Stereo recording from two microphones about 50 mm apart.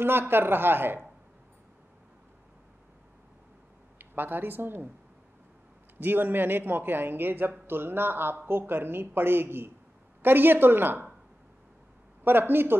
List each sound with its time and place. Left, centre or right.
0.0 s speech: right
4.0 s speech: right
5.9 s speech: right
12.3 s speech: right